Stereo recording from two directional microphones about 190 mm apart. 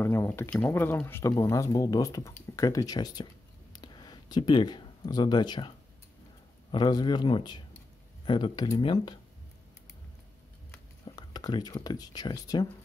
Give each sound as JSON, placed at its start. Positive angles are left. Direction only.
{"t": 0.0, "sound": "speech", "side_deg": 10}
{"t": 3.7, "sound": "a sound", "side_deg": 20}
{"t": 6.7, "sound": "a man's voice", "side_deg": 20}
{"t": 11.1, "sound": "speech", "side_deg": 20}